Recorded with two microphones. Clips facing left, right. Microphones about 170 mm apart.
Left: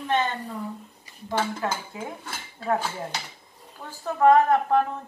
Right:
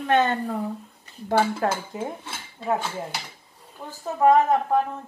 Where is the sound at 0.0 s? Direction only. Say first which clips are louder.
Right 5 dB; 55° right (ahead or behind).